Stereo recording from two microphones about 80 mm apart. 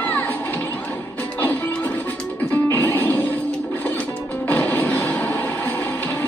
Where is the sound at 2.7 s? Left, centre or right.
Left.